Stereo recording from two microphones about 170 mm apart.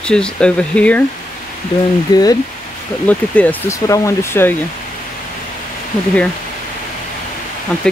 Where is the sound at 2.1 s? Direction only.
20° left (ahead or behind).